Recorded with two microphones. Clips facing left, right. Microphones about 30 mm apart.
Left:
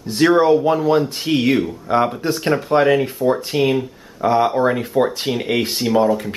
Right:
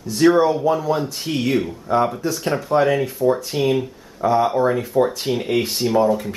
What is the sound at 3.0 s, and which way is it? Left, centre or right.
Speech, left.